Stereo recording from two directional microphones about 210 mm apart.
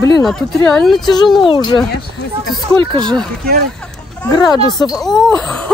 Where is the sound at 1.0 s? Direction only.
20° left (ahead or behind).